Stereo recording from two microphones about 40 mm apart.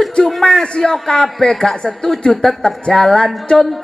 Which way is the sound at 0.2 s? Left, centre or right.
Centre.